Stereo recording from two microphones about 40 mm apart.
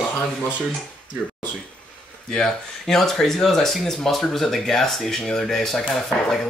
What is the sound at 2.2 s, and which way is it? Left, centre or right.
Speech, centre.